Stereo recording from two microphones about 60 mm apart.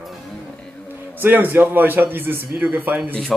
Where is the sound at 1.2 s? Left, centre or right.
Right.